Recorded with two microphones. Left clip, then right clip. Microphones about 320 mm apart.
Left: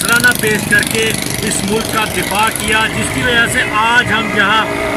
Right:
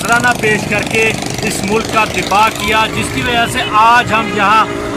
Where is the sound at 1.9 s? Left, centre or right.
Centre.